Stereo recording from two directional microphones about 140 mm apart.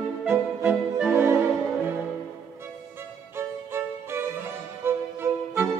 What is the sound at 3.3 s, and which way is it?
Violin, 15° right (ahead or behind).